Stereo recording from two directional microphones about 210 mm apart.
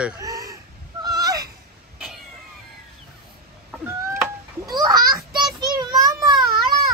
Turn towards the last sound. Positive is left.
turn(degrees=-15)  # may be behind; listen again after turning